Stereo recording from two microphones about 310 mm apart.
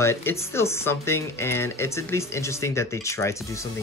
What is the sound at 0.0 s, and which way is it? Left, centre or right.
Speech, centre.